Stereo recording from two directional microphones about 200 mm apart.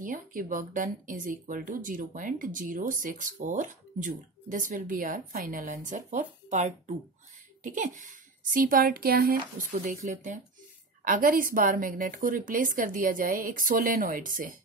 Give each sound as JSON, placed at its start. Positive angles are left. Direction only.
{"t": 0.0, "sound": "a woman's voice", "side_deg": -45}